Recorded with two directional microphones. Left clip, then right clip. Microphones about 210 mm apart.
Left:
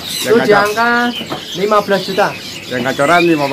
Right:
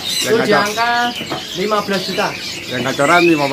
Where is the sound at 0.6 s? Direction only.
35° left (ahead or behind).